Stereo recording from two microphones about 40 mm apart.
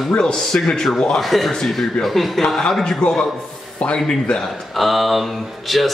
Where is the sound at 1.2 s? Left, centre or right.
Centre.